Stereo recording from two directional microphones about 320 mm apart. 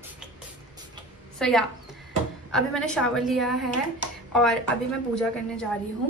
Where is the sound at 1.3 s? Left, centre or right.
Centre.